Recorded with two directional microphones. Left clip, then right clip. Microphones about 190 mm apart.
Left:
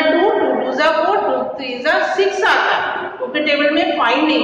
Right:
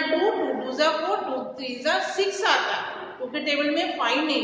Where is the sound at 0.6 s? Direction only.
25° right (ahead or behind).